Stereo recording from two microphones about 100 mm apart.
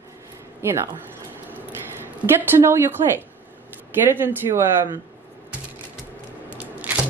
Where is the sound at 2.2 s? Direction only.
20° right (ahead or behind).